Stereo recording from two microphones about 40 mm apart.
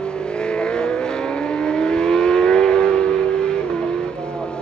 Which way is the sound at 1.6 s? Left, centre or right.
Left.